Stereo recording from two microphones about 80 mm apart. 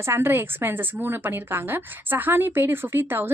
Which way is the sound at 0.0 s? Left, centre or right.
Right.